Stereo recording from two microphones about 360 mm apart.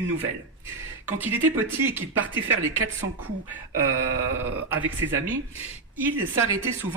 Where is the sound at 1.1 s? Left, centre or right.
Centre.